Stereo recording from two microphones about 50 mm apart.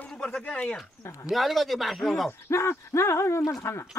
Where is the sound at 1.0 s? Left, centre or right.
Left.